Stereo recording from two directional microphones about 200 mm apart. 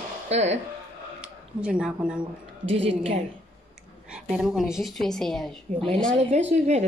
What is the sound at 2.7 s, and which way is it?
Speech, 30° right (ahead or behind).